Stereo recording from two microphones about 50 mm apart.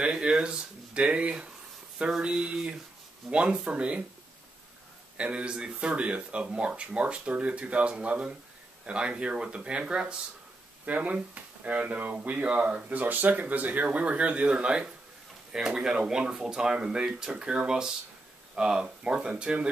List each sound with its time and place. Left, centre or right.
0.0 s speech: centre
5.1 s speech: right
12.4 s speech: right
12.9 s speech: right